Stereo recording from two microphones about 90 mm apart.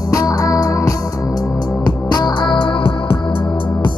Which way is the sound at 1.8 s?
50° left (ahead or behind).